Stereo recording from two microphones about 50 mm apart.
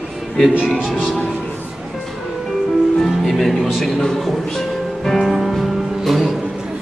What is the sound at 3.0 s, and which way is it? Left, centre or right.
Music, centre.